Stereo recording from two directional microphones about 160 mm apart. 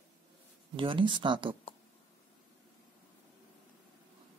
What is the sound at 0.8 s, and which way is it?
Speech, 30° right (ahead or behind).